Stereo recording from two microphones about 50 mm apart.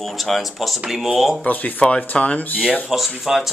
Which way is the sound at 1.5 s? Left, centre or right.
Left.